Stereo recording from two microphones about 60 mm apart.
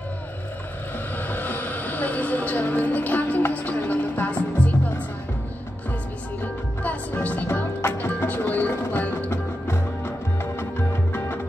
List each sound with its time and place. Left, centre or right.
1.1 s a sound: left
6.8 s music: left
9.3 s music: left